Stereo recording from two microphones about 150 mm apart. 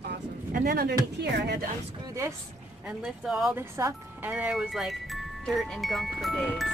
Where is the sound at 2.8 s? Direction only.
5° right (ahead or behind).